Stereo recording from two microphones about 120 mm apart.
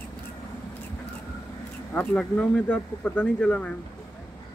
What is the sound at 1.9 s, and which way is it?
Speech, 10° left (ahead or behind).